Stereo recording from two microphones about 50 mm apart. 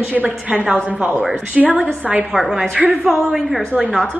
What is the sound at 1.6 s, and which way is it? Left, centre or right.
A woman's voice, centre.